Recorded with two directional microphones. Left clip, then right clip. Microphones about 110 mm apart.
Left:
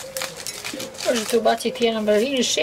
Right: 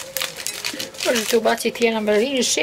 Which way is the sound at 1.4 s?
40° right (ahead or behind).